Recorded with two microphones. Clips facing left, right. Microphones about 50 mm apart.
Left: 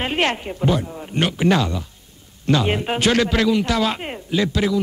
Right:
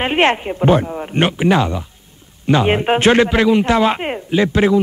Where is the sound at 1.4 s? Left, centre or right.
Right.